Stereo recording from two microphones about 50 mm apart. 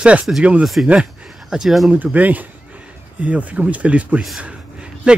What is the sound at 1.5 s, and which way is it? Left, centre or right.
Speech, centre.